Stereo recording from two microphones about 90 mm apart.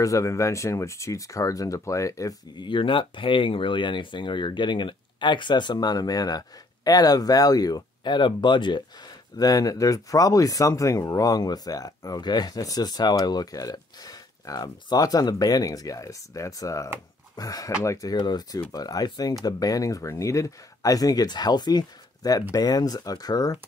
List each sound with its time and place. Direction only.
0.0 s speech: 35° left (ahead or behind)
2.5 s speech: 65° left (ahead or behind); by 23.6 s 45° left (ahead or behind)